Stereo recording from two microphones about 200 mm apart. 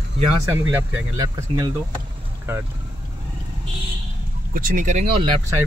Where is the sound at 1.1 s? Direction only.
20° right (ahead or behind).